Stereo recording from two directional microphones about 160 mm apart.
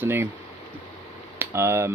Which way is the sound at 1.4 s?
15° right (ahead or behind).